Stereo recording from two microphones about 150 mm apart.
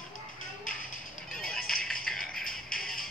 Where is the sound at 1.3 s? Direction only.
5° left (ahead or behind).